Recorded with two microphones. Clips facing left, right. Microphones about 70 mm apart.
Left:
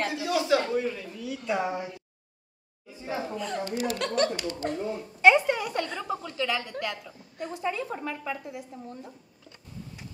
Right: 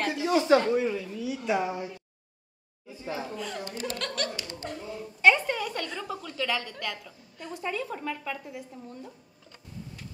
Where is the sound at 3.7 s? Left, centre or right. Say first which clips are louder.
Left 5 dB; right.